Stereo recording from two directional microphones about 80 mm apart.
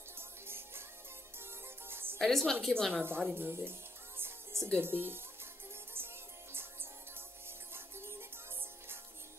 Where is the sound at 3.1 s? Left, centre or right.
Right.